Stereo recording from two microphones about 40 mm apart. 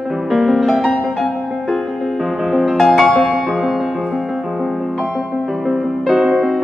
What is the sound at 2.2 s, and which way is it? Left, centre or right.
Music, centre.